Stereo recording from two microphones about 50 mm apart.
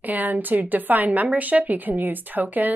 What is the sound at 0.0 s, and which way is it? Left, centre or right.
Speech, right.